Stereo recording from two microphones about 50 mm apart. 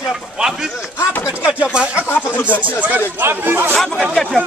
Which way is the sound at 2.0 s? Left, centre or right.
Left.